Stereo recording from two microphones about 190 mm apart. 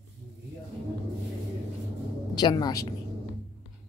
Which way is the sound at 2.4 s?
20° left (ahead or behind).